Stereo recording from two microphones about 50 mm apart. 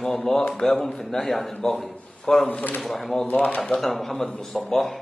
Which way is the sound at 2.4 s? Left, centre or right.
Left.